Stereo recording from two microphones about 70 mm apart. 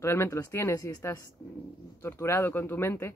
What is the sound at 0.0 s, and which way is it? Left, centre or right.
Speech, left.